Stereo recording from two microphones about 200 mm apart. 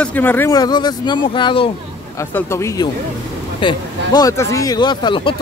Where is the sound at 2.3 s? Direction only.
15° left (ahead or behind).